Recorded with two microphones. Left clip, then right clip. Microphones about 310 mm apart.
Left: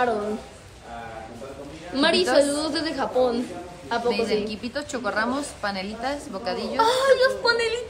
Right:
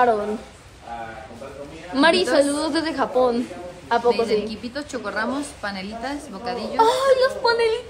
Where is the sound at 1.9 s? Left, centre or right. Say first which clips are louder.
Right 2 dB; right.